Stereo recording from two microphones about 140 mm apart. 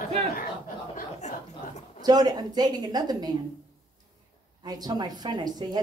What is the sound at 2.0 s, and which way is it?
Speech, 30° right (ahead or behind).